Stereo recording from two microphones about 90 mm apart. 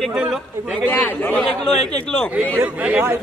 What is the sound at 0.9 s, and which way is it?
Speech, 20° left (ahead or behind).